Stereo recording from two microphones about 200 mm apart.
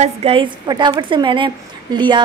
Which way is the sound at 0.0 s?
30° right (ahead or behind).